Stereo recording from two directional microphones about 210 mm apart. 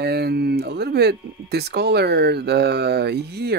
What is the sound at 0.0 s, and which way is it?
Speech, 50° right (ahead or behind).